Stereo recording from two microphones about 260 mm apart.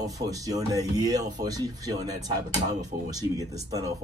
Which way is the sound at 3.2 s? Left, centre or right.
Centre.